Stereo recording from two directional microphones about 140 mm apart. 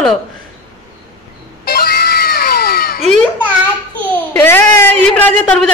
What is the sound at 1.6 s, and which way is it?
Cat, 90° left.